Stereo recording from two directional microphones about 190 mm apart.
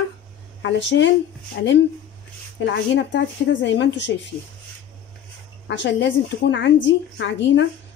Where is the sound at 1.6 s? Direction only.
60° left (ahead or behind).